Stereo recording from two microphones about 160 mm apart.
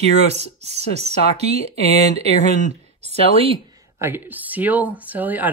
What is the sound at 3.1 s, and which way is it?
Speech, 35° right (ahead or behind).